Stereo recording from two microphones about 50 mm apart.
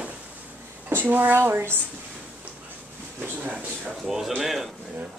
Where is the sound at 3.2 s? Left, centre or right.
Right.